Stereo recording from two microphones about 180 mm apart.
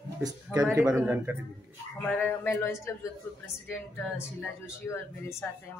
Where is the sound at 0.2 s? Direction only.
20° right (ahead or behind).